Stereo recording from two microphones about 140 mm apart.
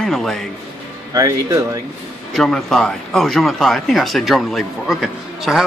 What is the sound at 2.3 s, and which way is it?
Speech, centre (ahead or behind).